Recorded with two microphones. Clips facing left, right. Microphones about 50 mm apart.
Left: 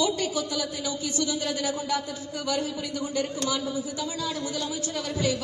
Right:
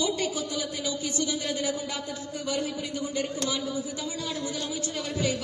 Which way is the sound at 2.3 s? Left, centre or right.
Left.